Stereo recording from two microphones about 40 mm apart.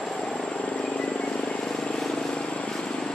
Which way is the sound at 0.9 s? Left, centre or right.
Left.